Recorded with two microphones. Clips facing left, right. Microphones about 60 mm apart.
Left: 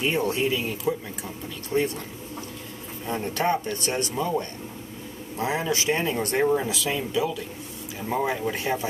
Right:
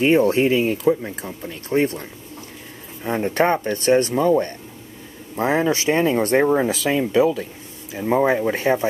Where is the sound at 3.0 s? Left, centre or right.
Right.